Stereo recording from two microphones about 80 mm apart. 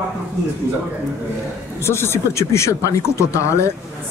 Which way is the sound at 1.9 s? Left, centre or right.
Left.